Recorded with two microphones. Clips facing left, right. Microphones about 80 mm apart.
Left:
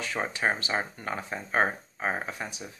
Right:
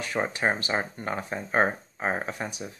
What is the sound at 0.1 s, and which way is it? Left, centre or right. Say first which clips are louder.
Speech: right 3 dB; centre.